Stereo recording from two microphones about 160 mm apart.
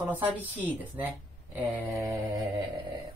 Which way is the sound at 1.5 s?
10° right (ahead or behind).